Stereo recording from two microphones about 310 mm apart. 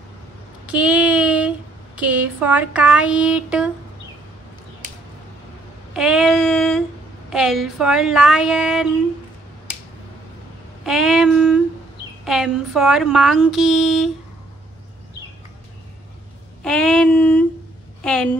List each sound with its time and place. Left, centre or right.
0.7 s child singing: centre
2.0 s speech: centre
5.9 s child singing: centre
7.2 s speech: centre
10.9 s speech: centre
16.6 s a sound: centre
18.0 s speech: centre